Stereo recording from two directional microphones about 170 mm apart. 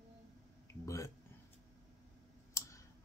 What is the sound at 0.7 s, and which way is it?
Speech, 20° left (ahead or behind).